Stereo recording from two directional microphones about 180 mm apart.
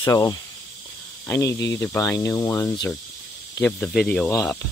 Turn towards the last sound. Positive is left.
turn(degrees=5)  # may be behind; listen again after turning